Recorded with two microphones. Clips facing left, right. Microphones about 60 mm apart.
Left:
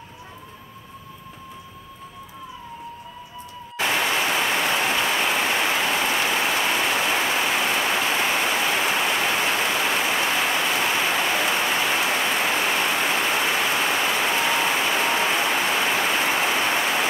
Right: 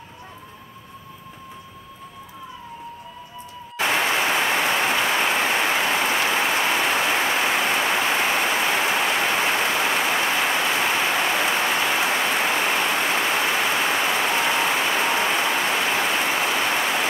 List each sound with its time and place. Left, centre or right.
3.8 s applause: centre
7.6 s rain: centre
11.0 s a sound: centre
11.2 s rain on surface: centre
13.0 s applause: centre